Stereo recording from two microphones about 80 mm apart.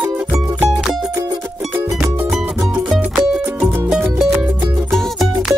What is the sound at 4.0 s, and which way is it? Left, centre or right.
Music, right.